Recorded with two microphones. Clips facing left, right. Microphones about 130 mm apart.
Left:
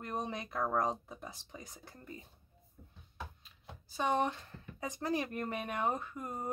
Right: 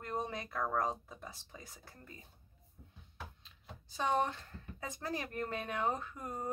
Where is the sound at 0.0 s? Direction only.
15° left (ahead or behind).